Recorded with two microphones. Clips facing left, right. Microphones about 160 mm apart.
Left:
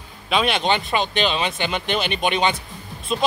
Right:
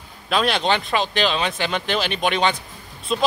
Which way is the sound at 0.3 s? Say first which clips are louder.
Even; centre (ahead or behind).